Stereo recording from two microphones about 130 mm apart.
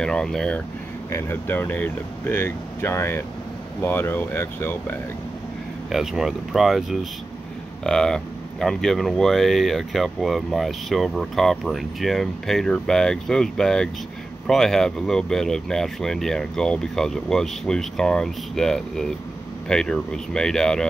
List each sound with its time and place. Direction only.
0.0 s speech: 5° left (ahead or behind)
1.1 s speech: 15° left (ahead or behind)
5.9 s speech: centre (ahead or behind)